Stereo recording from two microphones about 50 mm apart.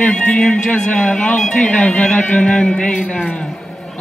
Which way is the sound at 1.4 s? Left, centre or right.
Centre.